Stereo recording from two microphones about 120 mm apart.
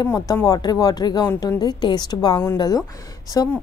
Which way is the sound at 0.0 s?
30° left (ahead or behind).